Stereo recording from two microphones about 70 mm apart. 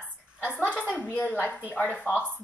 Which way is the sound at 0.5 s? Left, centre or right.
Left.